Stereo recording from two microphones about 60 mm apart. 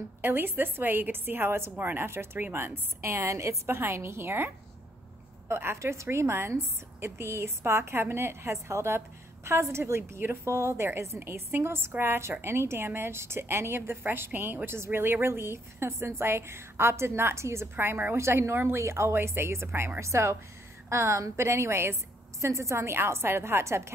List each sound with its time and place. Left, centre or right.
0.2 s a woman's voice: right
5.5 s a woman's voice: right
18.1 s a woman's voice: right